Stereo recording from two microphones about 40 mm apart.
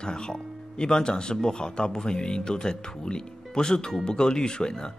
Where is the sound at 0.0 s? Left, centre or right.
Centre.